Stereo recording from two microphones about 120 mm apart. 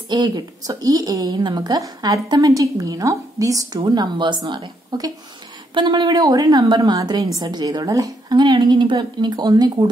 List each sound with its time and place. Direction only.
0.1 s a woman's voice: 35° right (ahead or behind)